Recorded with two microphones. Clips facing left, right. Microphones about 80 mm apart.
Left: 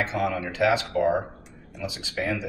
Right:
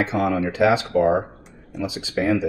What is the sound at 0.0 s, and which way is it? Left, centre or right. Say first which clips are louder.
Speech: right 5 dB; right.